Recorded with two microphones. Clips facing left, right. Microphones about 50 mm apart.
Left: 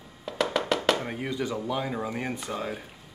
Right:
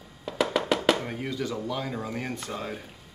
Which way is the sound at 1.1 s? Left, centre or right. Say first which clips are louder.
Left 1 dB; centre.